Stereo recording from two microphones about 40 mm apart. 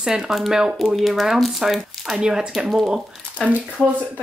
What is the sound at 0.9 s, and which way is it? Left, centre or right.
Speech, centre.